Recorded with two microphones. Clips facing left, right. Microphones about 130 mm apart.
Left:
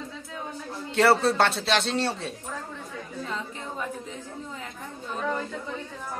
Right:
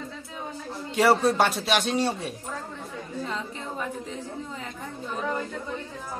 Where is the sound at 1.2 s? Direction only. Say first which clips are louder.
Right 1 dB; 15° right (ahead or behind).